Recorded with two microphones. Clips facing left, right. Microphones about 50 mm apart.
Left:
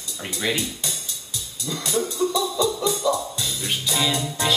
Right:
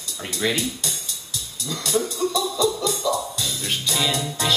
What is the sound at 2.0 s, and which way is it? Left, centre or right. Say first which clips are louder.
Music: left 1 dB; left.